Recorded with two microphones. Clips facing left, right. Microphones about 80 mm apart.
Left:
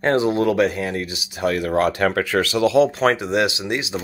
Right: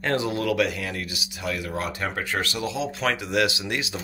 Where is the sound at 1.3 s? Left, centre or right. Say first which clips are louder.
Left 10 dB; left.